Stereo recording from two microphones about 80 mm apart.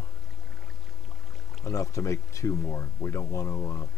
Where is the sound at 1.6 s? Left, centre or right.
Left.